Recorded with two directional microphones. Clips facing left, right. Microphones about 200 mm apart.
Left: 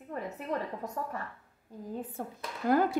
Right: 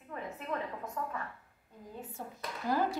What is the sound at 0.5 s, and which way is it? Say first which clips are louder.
Speech: left 3 dB; 35° left (ahead or behind).